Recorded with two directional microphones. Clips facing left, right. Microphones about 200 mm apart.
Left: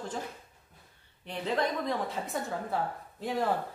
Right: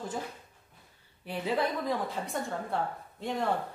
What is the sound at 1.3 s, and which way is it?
A woman's voice, 5° right (ahead or behind).